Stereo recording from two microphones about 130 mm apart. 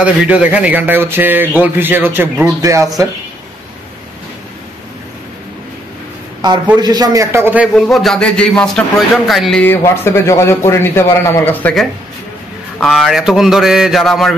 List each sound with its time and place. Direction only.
0.0 s a man's voice: 10° right (ahead or behind)
6.8 s a man's voice: 30° right (ahead or behind); by 7.7 s 15° right (ahead or behind)
7.7 s a man's voice: centre (ahead or behind)
9.6 s speech: 15° left (ahead or behind)
12.8 s a man's voice: centre (ahead or behind)